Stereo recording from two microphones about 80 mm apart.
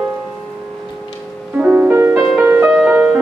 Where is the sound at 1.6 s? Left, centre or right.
Centre.